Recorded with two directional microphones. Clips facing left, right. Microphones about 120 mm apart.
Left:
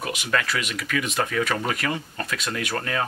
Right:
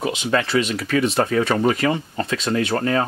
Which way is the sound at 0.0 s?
25° right (ahead or behind).